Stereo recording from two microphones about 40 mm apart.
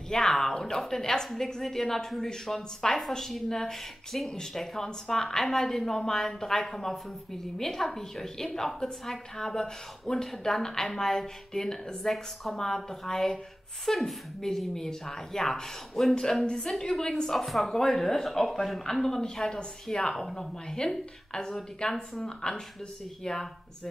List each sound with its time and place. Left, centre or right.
0.1 s a sound: centre
0.7 s speech: centre
17.3 s a woman's voice: centre